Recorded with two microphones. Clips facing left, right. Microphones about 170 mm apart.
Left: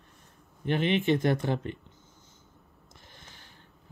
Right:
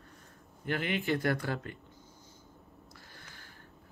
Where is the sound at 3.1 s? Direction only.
20° left (ahead or behind).